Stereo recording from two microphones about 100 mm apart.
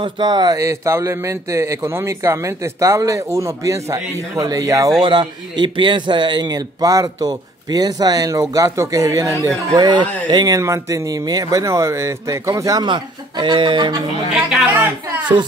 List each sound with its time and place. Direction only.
0.0 s a man's voice: 45° right (ahead or behind)
5.0 s a man's voice: 50° right (ahead or behind); by 9.6 s 30° right (ahead or behind)
9.8 s a man's voice: 45° right (ahead or behind)
12.8 s speech: 50° right (ahead or behind)
14.3 s a man's voice: centre (ahead or behind)
14.7 s a woman's voice: 15° right (ahead or behind)